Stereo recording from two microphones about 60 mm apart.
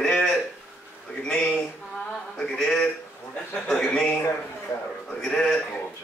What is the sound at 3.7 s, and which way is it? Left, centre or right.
Speech, centre.